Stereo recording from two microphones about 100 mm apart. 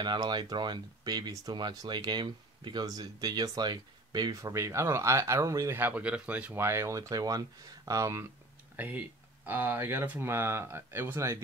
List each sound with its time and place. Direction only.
0.0 s speech: 45° right (ahead or behind)
4.4 s speech: 30° right (ahead or behind)
5.8 s speech: 15° right (ahead or behind)
6.6 s speech: 25° right (ahead or behind)
8.7 s speech: 15° right (ahead or behind)